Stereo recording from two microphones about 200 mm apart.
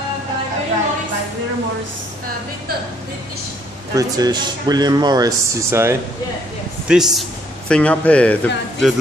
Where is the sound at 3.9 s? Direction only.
20° right (ahead or behind).